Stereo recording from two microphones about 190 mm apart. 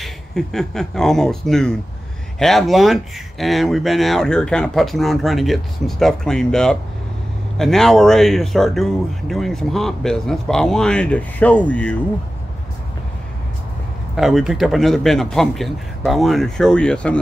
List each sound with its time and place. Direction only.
0.0 s speech: centre (ahead or behind)
14.1 s speech: centre (ahead or behind)